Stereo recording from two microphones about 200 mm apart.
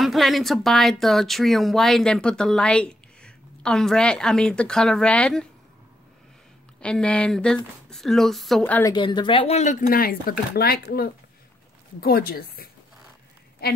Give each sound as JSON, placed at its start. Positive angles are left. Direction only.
{"t": 0.0, "sound": "speech", "side_deg": 0}
{"t": 6.8, "sound": "speech", "side_deg": 5}
{"t": 8.9, "sound": "speech", "side_deg": 20}